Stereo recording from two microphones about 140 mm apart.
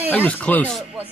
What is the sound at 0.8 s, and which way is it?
Music, 5° right (ahead or behind).